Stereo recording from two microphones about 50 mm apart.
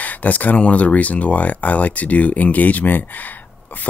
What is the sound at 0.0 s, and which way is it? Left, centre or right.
Speech, left.